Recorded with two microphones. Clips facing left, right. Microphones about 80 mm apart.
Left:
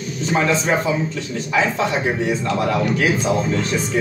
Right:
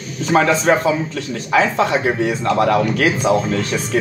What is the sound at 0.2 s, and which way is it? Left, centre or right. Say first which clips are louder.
Speech: right 4 dB; right.